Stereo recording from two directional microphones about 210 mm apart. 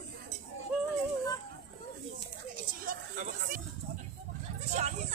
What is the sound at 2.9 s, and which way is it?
Chatter, 45° right (ahead or behind).